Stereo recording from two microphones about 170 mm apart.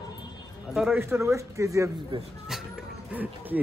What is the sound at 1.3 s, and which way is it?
Speech, 15° right (ahead or behind).